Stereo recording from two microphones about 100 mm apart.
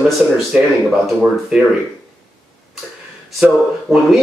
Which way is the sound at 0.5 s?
10° right (ahead or behind).